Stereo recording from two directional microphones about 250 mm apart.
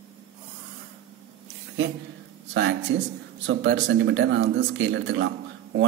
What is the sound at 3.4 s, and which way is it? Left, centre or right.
A man's voice, right.